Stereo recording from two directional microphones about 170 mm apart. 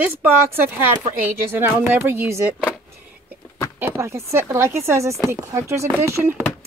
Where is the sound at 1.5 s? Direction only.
10° right (ahead or behind).